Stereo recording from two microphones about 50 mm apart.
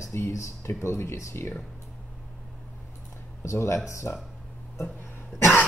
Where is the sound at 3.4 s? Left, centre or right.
Left.